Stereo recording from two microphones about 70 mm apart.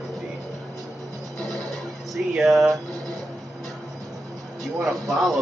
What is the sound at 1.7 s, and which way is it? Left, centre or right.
Speech, centre.